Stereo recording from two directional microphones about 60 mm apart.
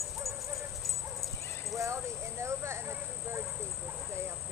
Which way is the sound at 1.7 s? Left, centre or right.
Right.